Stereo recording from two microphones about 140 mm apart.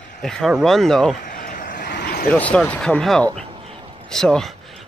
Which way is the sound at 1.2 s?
75° left (ahead or behind).